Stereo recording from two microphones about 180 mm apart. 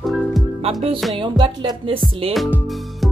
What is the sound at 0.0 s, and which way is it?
Music, centre (ahead or behind).